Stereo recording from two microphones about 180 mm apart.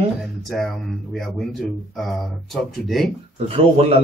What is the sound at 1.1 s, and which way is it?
Speech, centre (ahead or behind).